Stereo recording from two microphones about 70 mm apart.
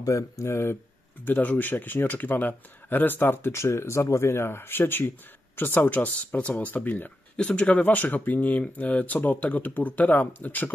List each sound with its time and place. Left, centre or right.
0.0 s speech: left
1.2 s speech: left